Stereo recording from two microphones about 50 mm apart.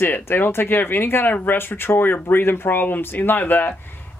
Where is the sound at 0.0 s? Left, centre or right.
Left.